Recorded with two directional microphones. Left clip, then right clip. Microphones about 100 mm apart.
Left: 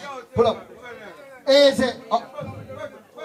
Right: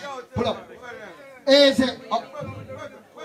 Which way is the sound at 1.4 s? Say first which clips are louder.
Left 1 dB; 20° left (ahead or behind).